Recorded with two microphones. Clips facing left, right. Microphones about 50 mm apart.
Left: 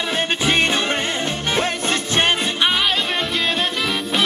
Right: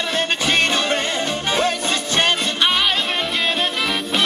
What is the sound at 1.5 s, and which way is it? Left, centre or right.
Music, left.